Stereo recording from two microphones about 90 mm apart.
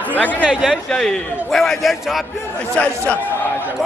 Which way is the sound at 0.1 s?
15° left (ahead or behind).